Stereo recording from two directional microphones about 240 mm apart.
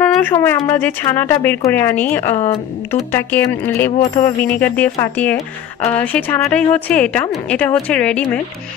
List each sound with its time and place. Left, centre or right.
0.0 s speech: centre
2.3 s speech: left
2.9 s a woman's voice: centre